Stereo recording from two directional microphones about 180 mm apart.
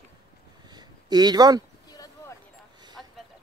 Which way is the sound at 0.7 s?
25° right (ahead or behind).